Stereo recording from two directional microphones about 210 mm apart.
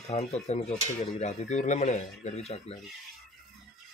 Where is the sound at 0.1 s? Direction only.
30° left (ahead or behind).